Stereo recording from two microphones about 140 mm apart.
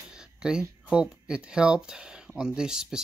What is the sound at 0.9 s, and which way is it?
Speech, 5° right (ahead or behind).